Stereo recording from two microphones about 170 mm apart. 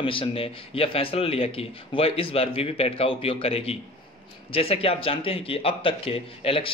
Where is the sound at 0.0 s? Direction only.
30° left (ahead or behind).